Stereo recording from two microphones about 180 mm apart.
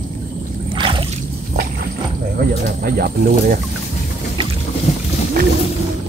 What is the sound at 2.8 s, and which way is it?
Speech, 55° right (ahead or behind).